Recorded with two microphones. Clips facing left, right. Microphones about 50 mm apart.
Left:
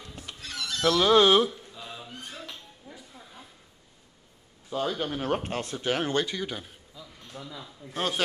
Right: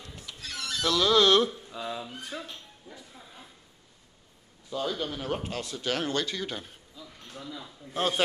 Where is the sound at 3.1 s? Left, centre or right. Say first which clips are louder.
Left 1 dB; centre.